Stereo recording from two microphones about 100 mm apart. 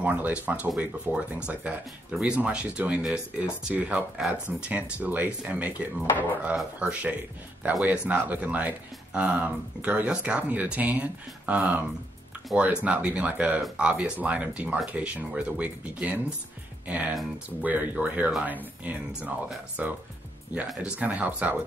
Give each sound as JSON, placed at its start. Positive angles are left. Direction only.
{"t": 0.0, "sound": "speech", "side_deg": -15}
{"t": 12.8, "sound": "speech", "side_deg": -15}